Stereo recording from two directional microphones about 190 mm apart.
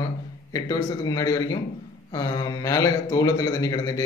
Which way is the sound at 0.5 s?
20° left (ahead or behind).